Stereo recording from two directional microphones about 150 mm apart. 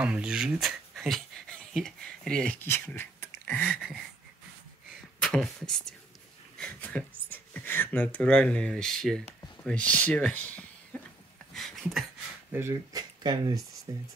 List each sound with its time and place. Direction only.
0.0 s speech: 5° right (ahead or behind)
5.2 s speech: 5° left (ahead or behind)
11.5 s a sound: centre (ahead or behind)
12.5 s speech: 15° right (ahead or behind)
13.2 s speech: 30° right (ahead or behind)